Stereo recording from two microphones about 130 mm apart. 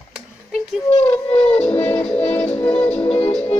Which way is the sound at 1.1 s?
10° left (ahead or behind).